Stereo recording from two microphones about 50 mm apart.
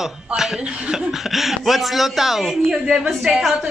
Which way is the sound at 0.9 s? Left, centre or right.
Centre.